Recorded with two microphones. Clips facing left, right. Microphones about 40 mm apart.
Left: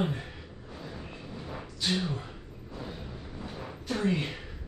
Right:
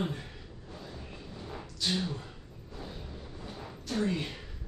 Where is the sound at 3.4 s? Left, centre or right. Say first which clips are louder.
Left 4 dB; centre.